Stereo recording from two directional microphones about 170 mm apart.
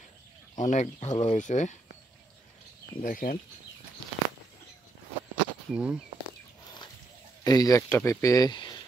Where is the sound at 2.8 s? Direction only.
55° left (ahead or behind).